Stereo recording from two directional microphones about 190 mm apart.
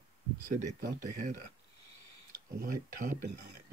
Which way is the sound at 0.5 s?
40° right (ahead or behind).